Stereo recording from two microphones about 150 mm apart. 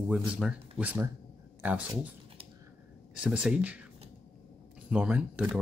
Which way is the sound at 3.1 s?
5° right (ahead or behind).